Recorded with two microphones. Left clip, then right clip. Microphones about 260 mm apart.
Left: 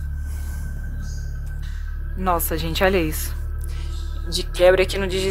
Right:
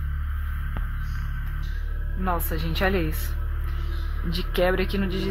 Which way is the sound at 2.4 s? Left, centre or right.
Left.